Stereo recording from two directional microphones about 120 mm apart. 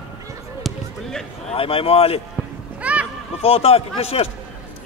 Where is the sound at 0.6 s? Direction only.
Centre (ahead or behind).